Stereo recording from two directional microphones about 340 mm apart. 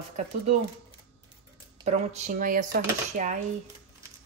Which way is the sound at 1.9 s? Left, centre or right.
Centre.